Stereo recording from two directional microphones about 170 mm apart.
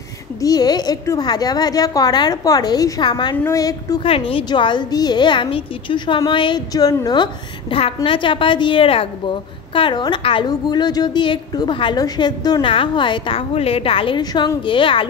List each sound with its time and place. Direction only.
0.4 s a woman's voice: 20° left (ahead or behind)
4.1 s a woman's voice: 30° left (ahead or behind)
7.7 s a woman's voice: 35° left (ahead or behind)